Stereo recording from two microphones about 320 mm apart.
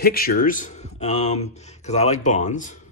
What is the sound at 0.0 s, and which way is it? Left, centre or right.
Speech, left.